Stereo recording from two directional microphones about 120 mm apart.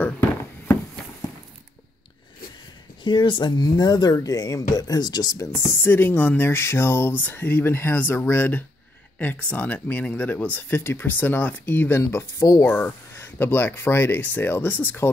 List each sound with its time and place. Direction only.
3.0 s speech: 40° left (ahead or behind)
5.5 s speech: 20° left (ahead or behind)
12.6 s speech: 15° left (ahead or behind)